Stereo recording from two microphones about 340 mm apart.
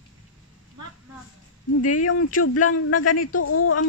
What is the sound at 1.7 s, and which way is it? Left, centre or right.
Speech, left.